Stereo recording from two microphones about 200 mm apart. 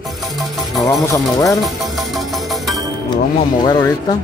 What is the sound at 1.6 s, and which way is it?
Music, centre (ahead or behind).